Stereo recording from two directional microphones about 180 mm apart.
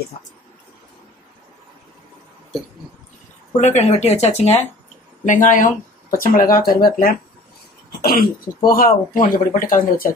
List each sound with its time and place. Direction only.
3.5 s speech: 40° left (ahead or behind)